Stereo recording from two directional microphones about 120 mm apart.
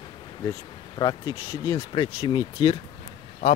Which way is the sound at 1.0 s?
35° left (ahead or behind).